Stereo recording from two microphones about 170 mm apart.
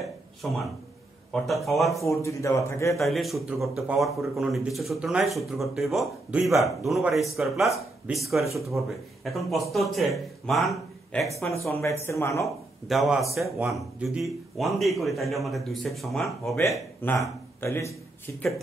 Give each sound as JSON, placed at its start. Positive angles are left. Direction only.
{"t": 0.0, "sound": "a sound", "side_deg": 0}
{"t": 1.3, "sound": "speech", "side_deg": 0}
{"t": 2.2, "sound": "speech", "side_deg": 15}
{"t": 3.0, "sound": "speech", "side_deg": 0}
{"t": 11.6, "sound": "speech", "side_deg": 15}
{"t": 12.8, "sound": "speech", "side_deg": 0}
{"t": 17.0, "sound": "speech", "side_deg": 15}